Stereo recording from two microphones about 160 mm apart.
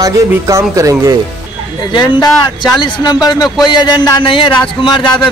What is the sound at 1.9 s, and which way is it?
Speech, 25° left (ahead or behind).